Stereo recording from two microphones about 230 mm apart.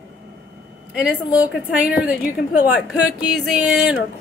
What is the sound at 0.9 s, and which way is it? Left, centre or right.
A woman's voice, centre.